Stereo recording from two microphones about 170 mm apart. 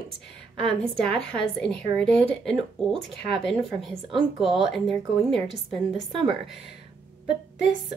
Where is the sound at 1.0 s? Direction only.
5° left (ahead or behind).